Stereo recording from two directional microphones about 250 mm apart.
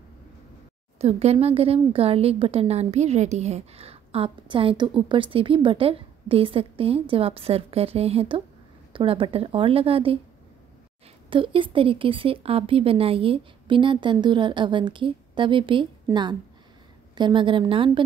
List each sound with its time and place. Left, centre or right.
0.9 s speech: right
11.2 s speech: centre